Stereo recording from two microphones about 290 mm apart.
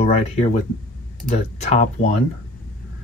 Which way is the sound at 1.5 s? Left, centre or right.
Left.